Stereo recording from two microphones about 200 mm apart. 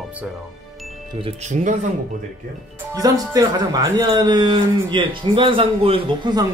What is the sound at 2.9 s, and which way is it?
Speech, 15° right (ahead or behind).